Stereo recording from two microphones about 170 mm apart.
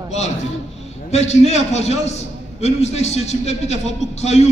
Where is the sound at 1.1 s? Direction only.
40° left (ahead or behind).